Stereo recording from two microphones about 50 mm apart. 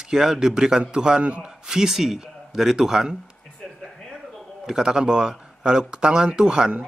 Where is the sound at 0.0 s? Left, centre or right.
Centre.